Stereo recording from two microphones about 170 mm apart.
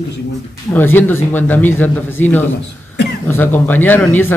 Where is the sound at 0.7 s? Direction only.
10° left (ahead or behind).